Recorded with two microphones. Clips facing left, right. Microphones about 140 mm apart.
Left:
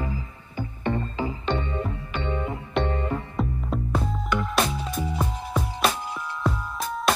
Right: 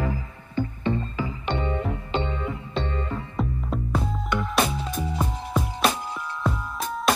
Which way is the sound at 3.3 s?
Centre (ahead or behind).